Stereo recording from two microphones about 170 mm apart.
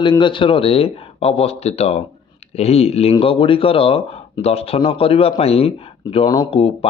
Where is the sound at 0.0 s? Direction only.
30° left (ahead or behind).